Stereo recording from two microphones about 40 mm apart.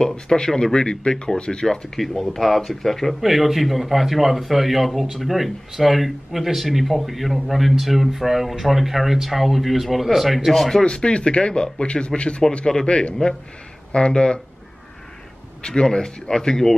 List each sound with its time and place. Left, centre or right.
0.0 s speech: centre
2.0 s speech: centre
3.2 s speech: centre
10.8 s speech: left
15.6 s speech: left